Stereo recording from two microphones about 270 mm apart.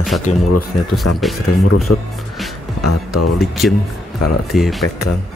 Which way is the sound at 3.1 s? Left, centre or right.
Left.